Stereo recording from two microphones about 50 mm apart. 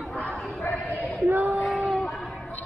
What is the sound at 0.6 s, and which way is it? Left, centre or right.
Speech, left.